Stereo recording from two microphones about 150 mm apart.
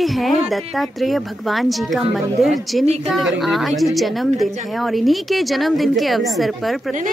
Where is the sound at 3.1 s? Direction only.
Centre (ahead or behind).